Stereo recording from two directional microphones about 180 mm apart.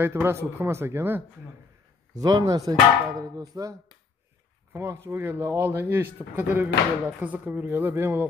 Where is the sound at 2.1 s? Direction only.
20° right (ahead or behind).